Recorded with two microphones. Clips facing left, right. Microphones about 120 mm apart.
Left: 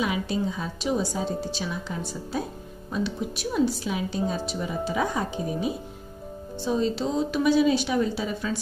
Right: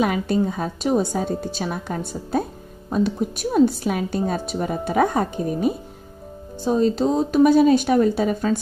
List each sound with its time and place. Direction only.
0.0 s a woman's voice: 50° right (ahead or behind)